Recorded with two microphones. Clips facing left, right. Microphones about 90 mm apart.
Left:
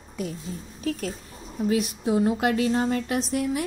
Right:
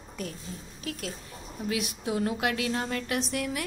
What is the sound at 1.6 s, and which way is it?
Speech, 35° left (ahead or behind).